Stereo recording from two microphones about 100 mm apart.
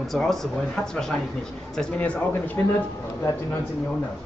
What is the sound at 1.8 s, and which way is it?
Speech, 10° left (ahead or behind).